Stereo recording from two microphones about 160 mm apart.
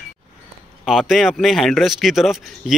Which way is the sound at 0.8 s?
Centre (ahead or behind).